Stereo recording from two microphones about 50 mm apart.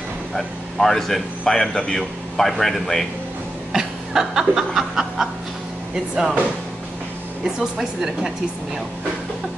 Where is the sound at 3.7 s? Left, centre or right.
Centre.